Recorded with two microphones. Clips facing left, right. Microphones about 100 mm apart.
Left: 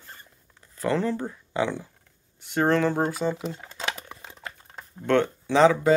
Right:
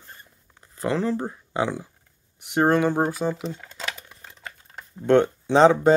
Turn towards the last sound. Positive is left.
turn(degrees=-30)  # may be behind; listen again after turning